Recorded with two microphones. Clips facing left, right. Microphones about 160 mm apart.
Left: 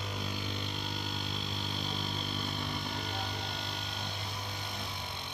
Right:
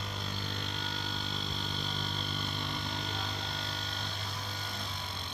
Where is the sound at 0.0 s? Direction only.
10° left (ahead or behind).